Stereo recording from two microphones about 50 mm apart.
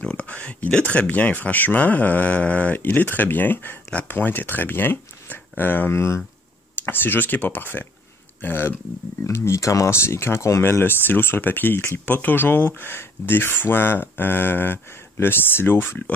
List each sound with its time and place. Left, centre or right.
0.3 s speech: left
5.9 s speech: left
6.9 s speech: left
9.2 s speech: left
12.2 s speech: left